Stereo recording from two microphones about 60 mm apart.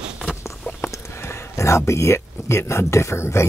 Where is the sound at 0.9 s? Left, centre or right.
Left.